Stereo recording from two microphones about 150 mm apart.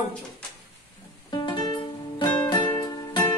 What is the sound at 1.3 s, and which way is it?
Music, 30° left (ahead or behind).